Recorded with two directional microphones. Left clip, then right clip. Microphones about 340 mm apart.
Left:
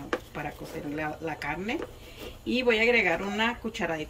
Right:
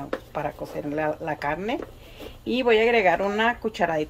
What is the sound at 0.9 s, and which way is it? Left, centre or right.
Speech, centre.